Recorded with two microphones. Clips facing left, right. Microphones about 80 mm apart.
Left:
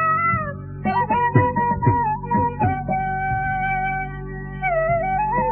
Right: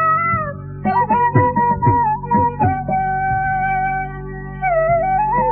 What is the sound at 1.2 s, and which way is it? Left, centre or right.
Music, centre.